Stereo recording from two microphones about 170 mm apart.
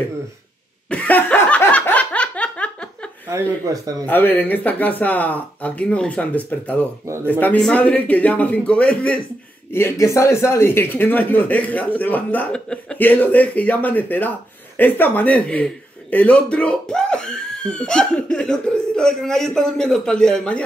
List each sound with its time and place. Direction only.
0.8 s a sound: 10° left (ahead or behind)
3.3 s speech: 15° right (ahead or behind)
4.0 s speech: 10° left (ahead or behind)